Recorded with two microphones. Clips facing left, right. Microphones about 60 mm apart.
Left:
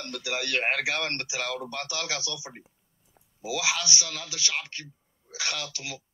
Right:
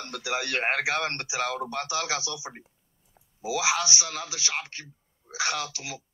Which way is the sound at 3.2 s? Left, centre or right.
Centre.